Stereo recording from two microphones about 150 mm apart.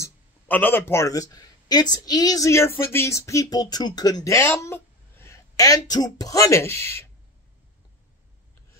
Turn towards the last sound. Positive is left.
turn(degrees=15)  # may be behind; listen again after turning